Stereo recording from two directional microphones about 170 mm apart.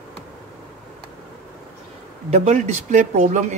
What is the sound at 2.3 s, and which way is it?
Speech, 40° right (ahead or behind).